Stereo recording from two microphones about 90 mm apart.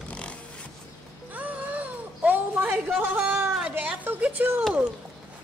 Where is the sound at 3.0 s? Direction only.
20° right (ahead or behind).